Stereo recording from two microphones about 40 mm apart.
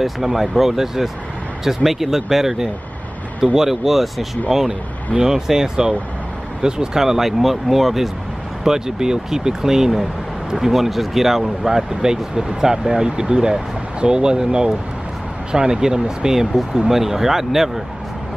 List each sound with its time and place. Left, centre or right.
0.0 s speech: centre